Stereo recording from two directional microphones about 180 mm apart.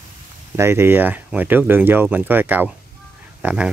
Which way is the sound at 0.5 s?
15° right (ahead or behind).